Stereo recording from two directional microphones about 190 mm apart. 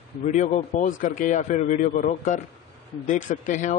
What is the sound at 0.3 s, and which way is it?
Speech, 40° left (ahead or behind).